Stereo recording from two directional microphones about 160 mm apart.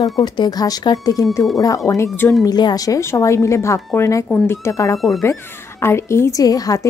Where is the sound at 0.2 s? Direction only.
25° left (ahead or behind).